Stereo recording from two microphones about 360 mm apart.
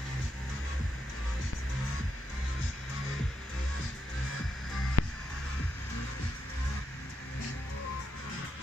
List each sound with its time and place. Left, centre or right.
5.0 s music: left